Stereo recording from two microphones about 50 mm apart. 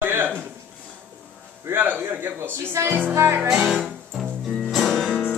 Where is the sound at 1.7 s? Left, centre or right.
Right.